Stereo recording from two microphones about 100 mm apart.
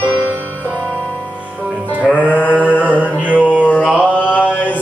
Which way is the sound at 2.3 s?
15° left (ahead or behind).